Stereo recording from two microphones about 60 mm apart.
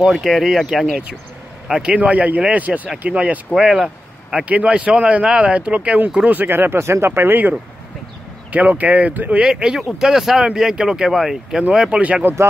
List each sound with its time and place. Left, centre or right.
0.0 s speech: centre
1.7 s speech: centre
3.5 s speech: centre
4.4 s speech: right
6.3 s speech: right
9.4 s speech: centre
12.0 s speech: right